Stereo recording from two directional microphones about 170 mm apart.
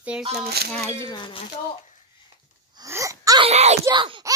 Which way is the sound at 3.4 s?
40° right (ahead or behind).